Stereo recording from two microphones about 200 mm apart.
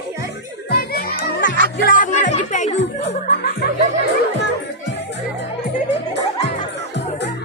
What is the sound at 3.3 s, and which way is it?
Music, 55° left (ahead or behind).